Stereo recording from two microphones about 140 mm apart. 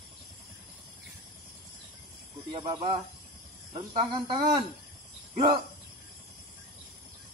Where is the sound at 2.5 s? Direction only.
40° right (ahead or behind).